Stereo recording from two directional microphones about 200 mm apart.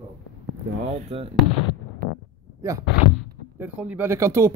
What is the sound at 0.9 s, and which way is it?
Speech, 30° right (ahead or behind).